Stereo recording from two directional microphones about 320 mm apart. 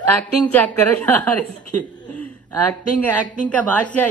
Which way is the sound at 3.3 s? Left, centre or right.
Centre.